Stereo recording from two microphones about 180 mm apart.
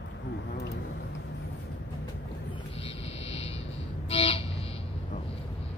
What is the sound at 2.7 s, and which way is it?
Vehicle, 35° left (ahead or behind).